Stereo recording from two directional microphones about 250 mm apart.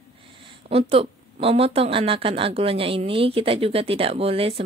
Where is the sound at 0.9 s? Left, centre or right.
Right.